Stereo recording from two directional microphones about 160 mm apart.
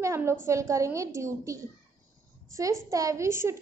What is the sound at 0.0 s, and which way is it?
A child's voice, 15° right (ahead or behind).